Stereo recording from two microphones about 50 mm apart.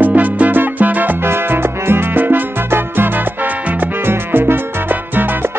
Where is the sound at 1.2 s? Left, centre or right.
Right.